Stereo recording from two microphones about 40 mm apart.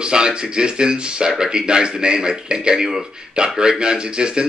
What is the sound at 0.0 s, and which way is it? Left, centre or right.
A man's voice, right.